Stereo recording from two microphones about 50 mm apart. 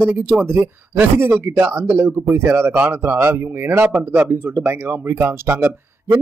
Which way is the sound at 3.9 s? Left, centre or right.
Right.